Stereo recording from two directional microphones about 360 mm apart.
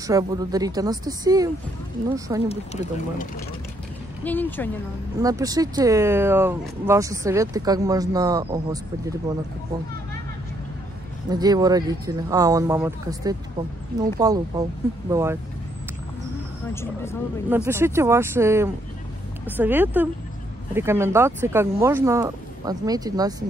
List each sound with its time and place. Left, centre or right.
0.0 s speech: centre
2.4 s speech: centre
4.2 s speech: centre
5.1 s speech: centre
11.2 s speech: centre
17.5 s speech: centre